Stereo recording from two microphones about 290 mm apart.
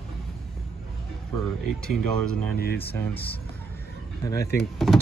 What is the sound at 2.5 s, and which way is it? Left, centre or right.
Speech, left.